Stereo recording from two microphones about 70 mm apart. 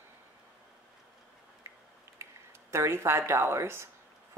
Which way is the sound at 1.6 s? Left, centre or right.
Right.